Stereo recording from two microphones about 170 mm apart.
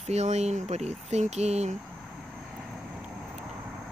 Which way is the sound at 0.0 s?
40° right (ahead or behind).